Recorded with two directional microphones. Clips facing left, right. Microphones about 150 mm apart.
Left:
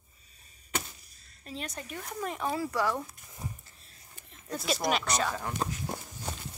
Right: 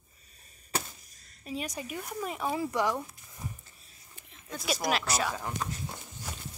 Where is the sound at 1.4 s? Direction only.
10° right (ahead or behind).